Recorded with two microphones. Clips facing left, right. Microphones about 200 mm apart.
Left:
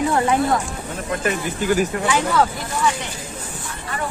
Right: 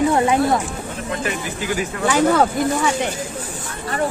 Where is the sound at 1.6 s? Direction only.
45° left (ahead or behind).